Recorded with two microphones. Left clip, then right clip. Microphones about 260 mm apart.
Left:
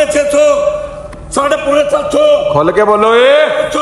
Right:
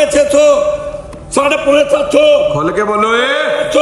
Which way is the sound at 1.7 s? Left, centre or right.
Left.